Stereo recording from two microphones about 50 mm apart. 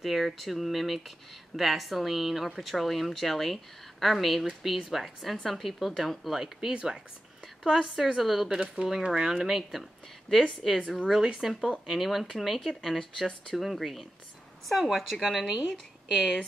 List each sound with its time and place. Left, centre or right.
0.0 s speech: centre
8.5 s speech: centre
11.1 s speech: centre